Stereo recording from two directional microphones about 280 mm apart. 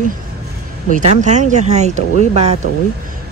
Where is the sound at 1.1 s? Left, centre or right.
Right.